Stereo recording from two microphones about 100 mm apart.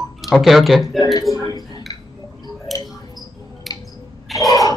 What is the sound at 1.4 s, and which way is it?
Speech, 40° left (ahead or behind).